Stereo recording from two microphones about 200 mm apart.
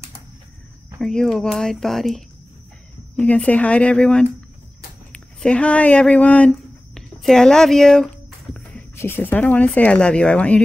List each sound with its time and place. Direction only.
0.9 s speech: centre (ahead or behind)
5.1 s a sound: 5° left (ahead or behind)
8.9 s speech: 10° left (ahead or behind)